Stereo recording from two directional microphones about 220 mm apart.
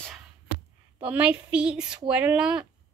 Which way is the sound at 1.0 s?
5° right (ahead or behind).